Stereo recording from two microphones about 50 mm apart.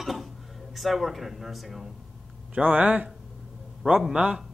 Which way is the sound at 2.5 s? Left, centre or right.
Right.